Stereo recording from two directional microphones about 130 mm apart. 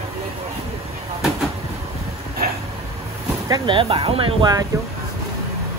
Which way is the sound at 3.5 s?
40° right (ahead or behind).